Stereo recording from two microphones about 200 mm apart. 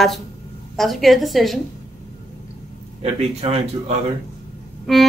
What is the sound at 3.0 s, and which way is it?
Speech, 30° right (ahead or behind).